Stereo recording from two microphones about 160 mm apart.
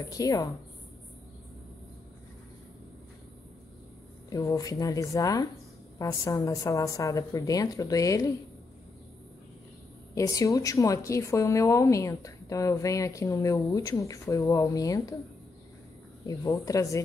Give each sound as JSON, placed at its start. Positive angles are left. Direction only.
{"t": 0.1, "sound": "a woman's voice", "side_deg": 20}
{"t": 4.3, "sound": "a woman's voice", "side_deg": 20}
{"t": 10.1, "sound": "a woman's voice", "side_deg": 20}
{"t": 16.3, "sound": "a woman's voice", "side_deg": 20}